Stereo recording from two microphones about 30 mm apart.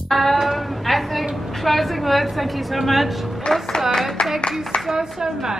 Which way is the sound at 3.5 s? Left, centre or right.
Centre.